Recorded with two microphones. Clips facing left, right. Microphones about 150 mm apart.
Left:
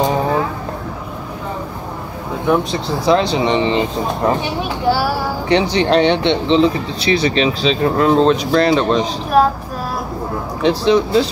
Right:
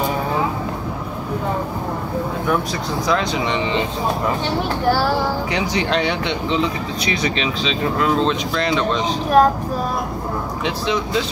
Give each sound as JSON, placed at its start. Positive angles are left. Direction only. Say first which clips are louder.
{"t": 2.4, "sound": "speech", "louder": "left 9 dB", "side_deg": 25}
{"t": 4.5, "sound": "speech", "louder": "left 1 dB", "side_deg": 15}
{"t": 5.5, "sound": "speech", "louder": "left 6 dB", "side_deg": 30}
{"t": 10.6, "sound": "speech", "louder": "left 10 dB", "side_deg": 35}